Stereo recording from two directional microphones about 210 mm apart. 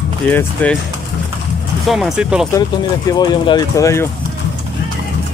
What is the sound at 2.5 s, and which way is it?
Speech, 20° left (ahead or behind).